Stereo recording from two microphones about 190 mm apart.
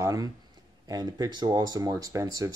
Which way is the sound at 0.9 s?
20° right (ahead or behind).